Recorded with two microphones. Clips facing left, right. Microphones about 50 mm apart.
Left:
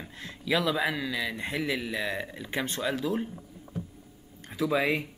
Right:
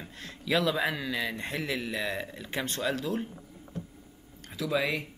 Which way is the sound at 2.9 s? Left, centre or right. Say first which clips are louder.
Left 3 dB; left.